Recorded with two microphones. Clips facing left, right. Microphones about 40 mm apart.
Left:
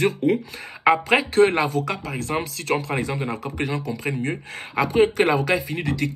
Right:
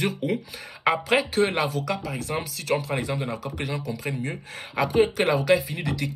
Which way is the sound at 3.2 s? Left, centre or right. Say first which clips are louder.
Left 4 dB; left.